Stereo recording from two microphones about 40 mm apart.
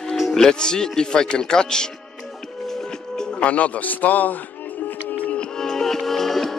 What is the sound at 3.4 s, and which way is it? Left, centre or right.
Speech, left.